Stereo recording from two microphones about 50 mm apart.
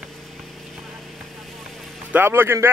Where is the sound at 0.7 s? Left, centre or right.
Centre.